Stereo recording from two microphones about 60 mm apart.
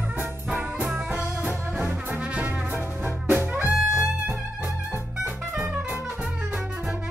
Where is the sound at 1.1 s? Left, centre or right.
Centre.